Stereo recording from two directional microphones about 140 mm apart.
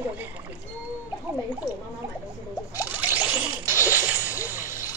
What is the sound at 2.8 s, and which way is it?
Zipper, 10° right (ahead or behind).